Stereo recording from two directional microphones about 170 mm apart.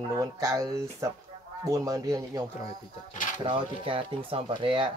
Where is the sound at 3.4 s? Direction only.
30° right (ahead or behind).